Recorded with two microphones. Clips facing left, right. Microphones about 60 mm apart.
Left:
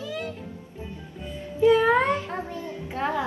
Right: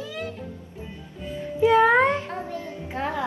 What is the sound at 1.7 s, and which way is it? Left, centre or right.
Speech, right.